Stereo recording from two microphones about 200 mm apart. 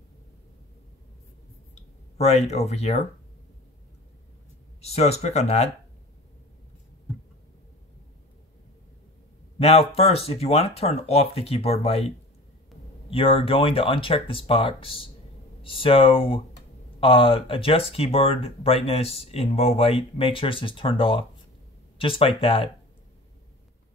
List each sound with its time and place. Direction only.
1.8 s speech: 30° left (ahead or behind)
4.8 s speech: 30° left (ahead or behind)
9.6 s speech: 30° left (ahead or behind)
13.1 s speech: 25° left (ahead or behind)